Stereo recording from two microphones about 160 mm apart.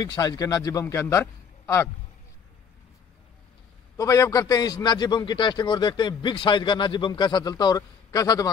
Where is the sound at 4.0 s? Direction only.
20° left (ahead or behind).